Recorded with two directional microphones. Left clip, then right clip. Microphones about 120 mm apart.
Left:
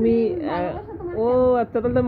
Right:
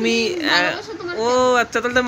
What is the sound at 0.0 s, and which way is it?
Speech, 5° right (ahead or behind).